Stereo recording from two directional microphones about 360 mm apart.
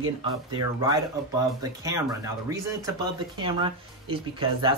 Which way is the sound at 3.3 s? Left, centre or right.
Centre.